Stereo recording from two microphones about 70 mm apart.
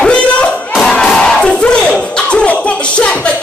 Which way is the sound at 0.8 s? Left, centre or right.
Centre.